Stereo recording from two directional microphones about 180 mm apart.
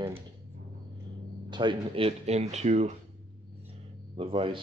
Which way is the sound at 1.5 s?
25° right (ahead or behind).